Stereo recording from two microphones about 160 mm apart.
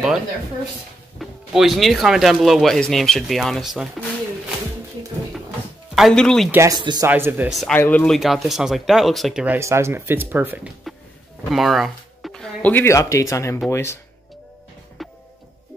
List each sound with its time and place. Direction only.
1.2 s speech: centre (ahead or behind)
5.9 s speech: centre (ahead or behind)
6.5 s speech: 15° right (ahead or behind)
7.1 s speech: 10° right (ahead or behind)
7.5 s speech: centre (ahead or behind)
11.5 s speech: centre (ahead or behind); by 13.9 s 15° left (ahead or behind)
15.0 s music: centre (ahead or behind)